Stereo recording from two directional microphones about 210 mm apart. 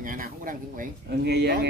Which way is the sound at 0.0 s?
40° right (ahead or behind).